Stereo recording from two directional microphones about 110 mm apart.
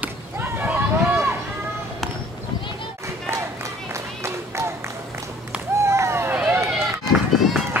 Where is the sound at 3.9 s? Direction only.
25° right (ahead or behind).